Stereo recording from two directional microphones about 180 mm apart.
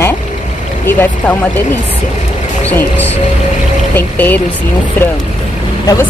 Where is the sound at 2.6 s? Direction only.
10° left (ahead or behind).